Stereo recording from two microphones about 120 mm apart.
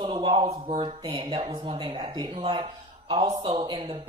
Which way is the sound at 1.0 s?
45° right (ahead or behind).